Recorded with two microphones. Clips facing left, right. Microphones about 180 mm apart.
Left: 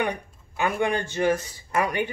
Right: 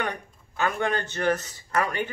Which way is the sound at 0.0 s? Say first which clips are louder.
Left 4 dB; 15° left (ahead or behind).